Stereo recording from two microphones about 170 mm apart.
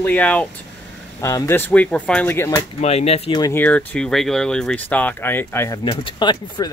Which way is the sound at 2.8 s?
35° left (ahead or behind).